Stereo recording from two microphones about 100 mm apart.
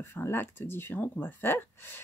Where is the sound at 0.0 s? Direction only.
25° left (ahead or behind).